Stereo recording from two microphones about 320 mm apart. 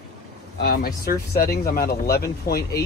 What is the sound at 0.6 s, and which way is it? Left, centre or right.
Speech, left.